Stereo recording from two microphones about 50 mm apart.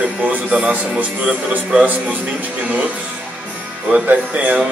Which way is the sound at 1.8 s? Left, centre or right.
Right.